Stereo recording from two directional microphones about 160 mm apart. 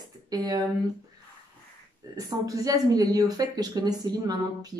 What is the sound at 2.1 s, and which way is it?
Speech, 20° right (ahead or behind).